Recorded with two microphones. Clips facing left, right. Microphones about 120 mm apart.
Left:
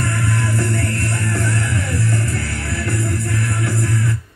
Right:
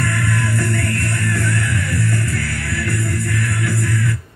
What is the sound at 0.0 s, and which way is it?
Music, 20° left (ahead or behind).